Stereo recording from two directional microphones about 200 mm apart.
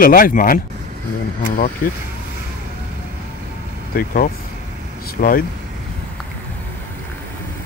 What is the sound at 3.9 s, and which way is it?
Speech, 45° left (ahead or behind).